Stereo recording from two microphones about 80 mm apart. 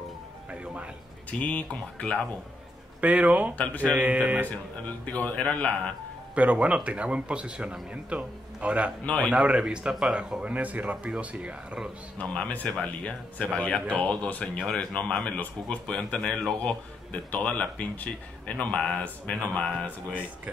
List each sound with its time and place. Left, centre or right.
1.4 s speech: centre
3.0 s a man's voice: centre
3.5 s speech: centre
3.9 s a man's voice: centre
4.5 s speech: centre
6.3 s a man's voice: centre
9.0 s speech: centre
9.3 s a man's voice: centre
10.4 s a man's voice: centre
12.2 s speech: centre